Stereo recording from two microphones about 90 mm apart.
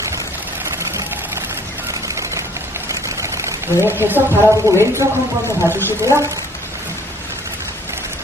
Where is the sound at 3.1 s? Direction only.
35° right (ahead or behind).